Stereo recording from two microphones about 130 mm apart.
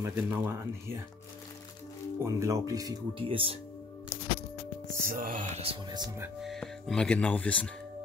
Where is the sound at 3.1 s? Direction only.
45° right (ahead or behind).